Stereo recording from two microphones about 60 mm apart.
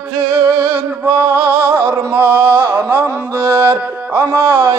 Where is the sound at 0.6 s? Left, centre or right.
Right.